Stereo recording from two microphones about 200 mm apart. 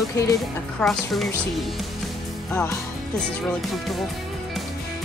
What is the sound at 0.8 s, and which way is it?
Speech, centre (ahead or behind).